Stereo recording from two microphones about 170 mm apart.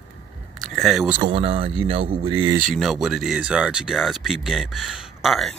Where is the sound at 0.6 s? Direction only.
Centre (ahead or behind).